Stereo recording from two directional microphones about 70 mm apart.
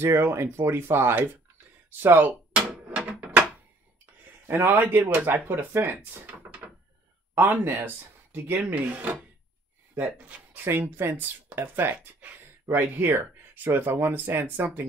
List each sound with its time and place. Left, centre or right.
0.0 s speech: right
2.9 s a sound: centre
4.0 s speech: right